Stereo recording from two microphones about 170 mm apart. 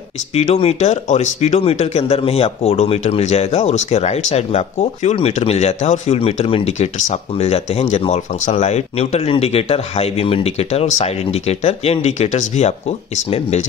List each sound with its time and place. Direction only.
0.3 s speech: 40° left (ahead or behind)